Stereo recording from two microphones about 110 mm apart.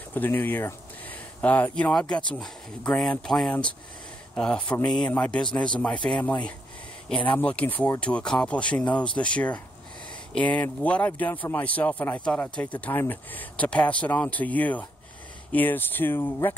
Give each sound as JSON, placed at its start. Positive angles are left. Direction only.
{"t": 0.1, "sound": "speech", "side_deg": 15}